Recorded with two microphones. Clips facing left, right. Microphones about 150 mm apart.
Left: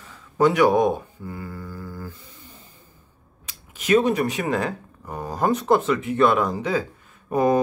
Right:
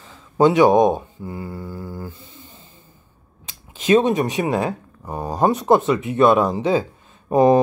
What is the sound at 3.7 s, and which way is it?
Speech, 25° right (ahead or behind).